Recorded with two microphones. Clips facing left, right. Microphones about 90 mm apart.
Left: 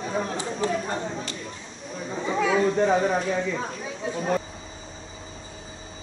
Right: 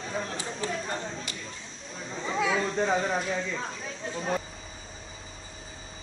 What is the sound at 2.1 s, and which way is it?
Chatter, 15° left (ahead or behind).